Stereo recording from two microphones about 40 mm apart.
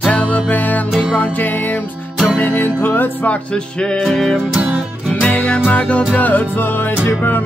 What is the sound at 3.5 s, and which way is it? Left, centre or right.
Music, left.